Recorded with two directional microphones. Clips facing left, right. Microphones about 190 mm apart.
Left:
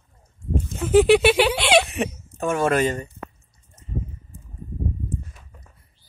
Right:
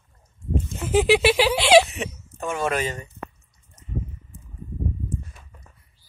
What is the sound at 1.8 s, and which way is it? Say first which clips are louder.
Speech: left 6 dB; 50° left (ahead or behind).